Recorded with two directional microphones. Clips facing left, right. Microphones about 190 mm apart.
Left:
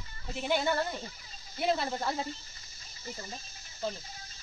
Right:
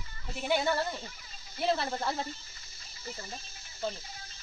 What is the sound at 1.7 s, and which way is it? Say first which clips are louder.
Speech: even; 5° left (ahead or behind).